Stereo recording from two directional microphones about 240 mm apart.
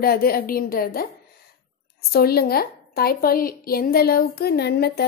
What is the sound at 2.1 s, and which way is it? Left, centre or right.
A woman's voice, left.